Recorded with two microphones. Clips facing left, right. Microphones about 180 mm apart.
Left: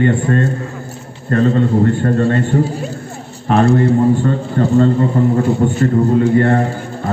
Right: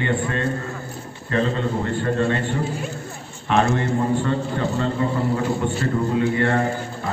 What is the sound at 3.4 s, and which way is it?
A man's voice, 35° left (ahead or behind).